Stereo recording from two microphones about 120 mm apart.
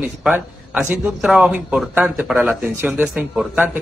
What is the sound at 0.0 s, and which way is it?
A man's voice, 15° right (ahead or behind).